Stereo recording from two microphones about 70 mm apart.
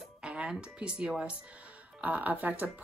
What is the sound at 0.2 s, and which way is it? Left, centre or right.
Speech, centre.